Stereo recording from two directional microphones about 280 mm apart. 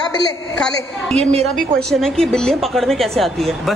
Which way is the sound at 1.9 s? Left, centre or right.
Centre.